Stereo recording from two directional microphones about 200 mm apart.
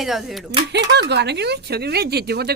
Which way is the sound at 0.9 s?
60° right (ahead or behind).